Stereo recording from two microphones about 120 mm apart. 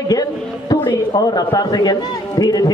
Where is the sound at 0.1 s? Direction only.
30° left (ahead or behind).